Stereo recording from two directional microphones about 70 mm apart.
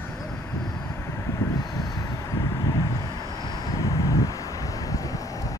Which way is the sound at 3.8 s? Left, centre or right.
Left.